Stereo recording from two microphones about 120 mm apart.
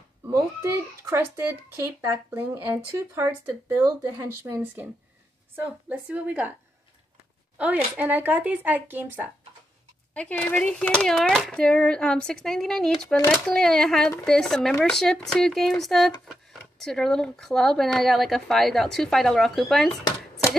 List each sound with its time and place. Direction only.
0.3 s a child's voice: 25° right (ahead or behind)
7.5 s speech: 10° right (ahead or behind)
10.1 s speech: 10° left (ahead or behind)